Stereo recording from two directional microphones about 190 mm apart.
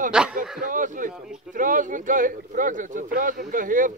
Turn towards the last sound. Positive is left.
turn(degrees=-45)  # may be behind; listen again after turning